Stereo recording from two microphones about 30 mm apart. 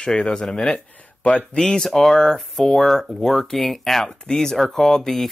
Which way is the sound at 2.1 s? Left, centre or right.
Left.